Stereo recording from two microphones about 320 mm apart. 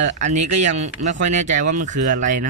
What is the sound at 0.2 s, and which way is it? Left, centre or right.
Speech, right.